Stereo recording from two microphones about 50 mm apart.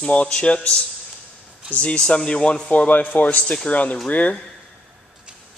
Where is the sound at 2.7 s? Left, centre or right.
Left.